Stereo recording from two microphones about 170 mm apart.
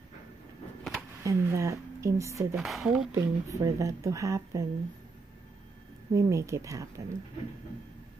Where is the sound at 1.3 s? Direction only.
15° right (ahead or behind).